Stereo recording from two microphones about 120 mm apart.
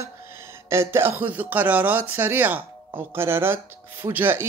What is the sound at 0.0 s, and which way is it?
Speech, 20° right (ahead or behind).